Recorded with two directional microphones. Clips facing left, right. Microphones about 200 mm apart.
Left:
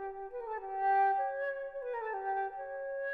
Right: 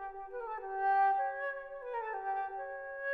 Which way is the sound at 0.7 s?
5° left (ahead or behind).